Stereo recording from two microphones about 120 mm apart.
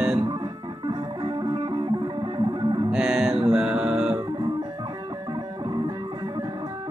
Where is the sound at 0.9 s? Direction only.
40° right (ahead or behind).